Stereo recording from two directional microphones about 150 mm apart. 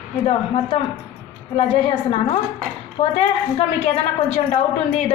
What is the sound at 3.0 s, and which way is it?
A woman's voice, 40° left (ahead or behind).